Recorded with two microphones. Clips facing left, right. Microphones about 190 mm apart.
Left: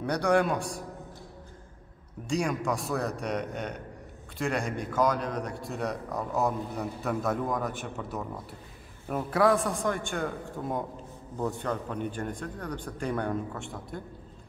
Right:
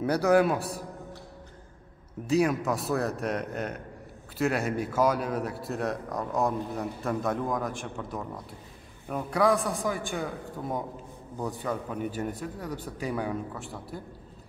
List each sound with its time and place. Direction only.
0.0 s a man's voice: 5° right (ahead or behind)
2.2 s a man's voice: 5° right (ahead or behind)